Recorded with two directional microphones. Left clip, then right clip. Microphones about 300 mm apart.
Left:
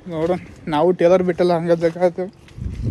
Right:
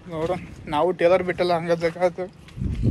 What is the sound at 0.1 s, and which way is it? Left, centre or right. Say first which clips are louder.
Speech: left 5 dB; left.